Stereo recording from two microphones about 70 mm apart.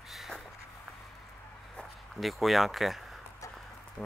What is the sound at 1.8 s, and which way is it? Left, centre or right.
Speech, centre.